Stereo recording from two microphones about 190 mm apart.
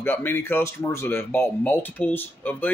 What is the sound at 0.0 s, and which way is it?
Speech, 10° left (ahead or behind).